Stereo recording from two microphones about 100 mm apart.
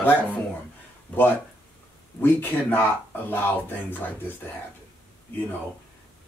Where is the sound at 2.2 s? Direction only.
20° left (ahead or behind).